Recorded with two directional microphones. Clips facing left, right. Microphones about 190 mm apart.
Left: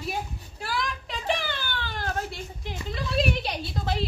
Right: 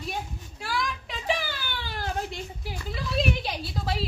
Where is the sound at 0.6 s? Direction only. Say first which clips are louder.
Even; centre (ahead or behind).